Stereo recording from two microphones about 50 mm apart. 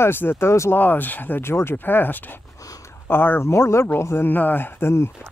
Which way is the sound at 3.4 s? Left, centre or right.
Left.